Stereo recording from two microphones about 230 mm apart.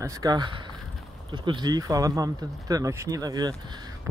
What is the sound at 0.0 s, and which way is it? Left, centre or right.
Speech, centre.